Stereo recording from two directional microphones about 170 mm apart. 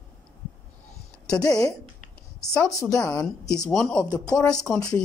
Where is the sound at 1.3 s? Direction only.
20° left (ahead or behind).